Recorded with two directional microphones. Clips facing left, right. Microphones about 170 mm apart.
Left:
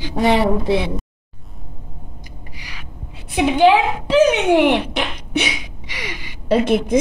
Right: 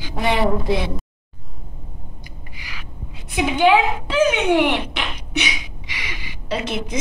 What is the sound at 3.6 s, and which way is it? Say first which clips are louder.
A woman's voice: left 1 dB; 40° left (ahead or behind).